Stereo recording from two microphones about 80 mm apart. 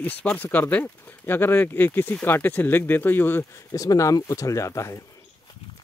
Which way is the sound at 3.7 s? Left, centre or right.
Left.